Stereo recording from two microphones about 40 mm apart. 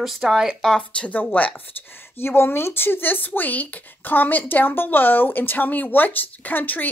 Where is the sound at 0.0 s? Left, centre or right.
Centre.